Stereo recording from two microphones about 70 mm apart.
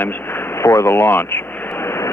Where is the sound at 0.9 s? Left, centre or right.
Left.